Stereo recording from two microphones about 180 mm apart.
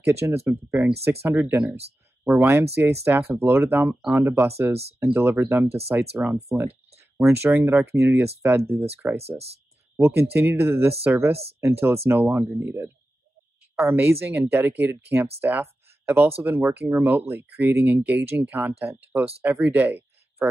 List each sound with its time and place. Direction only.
0.0 s speech: 15° right (ahead or behind)
7.0 s a sound: 15° right (ahead or behind)
7.4 s speech: 10° right (ahead or behind)